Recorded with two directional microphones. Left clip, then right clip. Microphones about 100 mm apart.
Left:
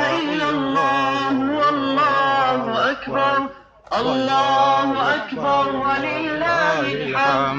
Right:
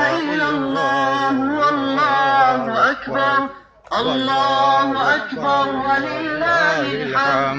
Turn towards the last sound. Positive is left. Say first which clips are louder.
# right 1 dB
turn(degrees=25)  # may be behind; listen again after turning